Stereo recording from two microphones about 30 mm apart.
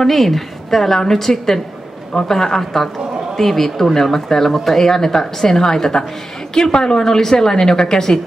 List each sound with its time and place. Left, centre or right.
0.0 s a woman's voice: centre